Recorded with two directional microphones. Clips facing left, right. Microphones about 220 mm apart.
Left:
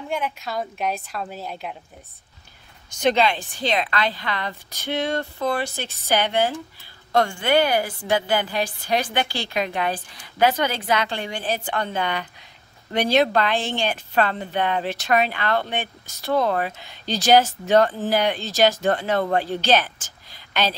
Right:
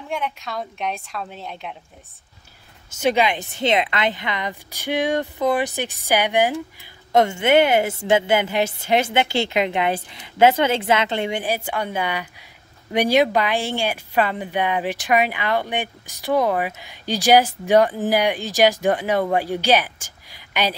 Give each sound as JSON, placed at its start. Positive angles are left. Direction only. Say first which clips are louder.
{"t": 0.1, "sound": "a woman's voice", "louder": "even", "side_deg": 0}
{"t": 2.9, "sound": "a woman's voice", "louder": "even", "side_deg": -10}
{"t": 11.4, "sound": "speech", "louder": "right 1 dB", "side_deg": -10}